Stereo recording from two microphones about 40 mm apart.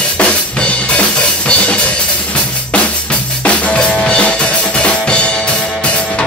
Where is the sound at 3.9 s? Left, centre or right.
Centre.